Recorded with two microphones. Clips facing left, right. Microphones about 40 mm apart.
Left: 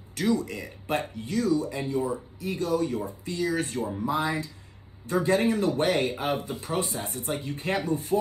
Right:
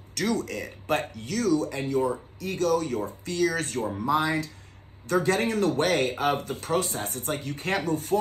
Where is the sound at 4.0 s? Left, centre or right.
Right.